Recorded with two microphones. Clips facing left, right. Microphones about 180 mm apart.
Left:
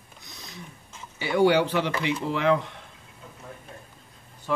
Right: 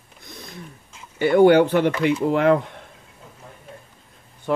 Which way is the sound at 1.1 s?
55° right (ahead or behind).